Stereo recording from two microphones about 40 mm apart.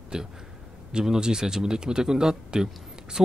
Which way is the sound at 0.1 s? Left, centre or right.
Centre.